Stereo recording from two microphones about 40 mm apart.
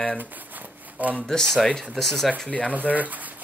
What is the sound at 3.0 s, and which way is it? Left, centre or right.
Speech, right.